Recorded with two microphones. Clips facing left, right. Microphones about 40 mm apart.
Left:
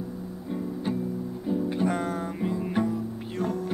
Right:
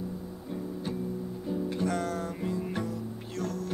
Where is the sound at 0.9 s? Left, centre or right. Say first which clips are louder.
Left 5 dB; centre.